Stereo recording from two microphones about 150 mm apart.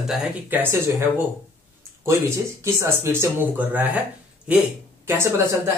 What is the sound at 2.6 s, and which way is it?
Speech, 20° right (ahead or behind).